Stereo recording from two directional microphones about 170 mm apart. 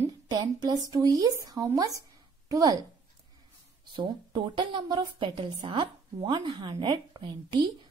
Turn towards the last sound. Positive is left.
turn(degrees=-25)  # may be behind; listen again after turning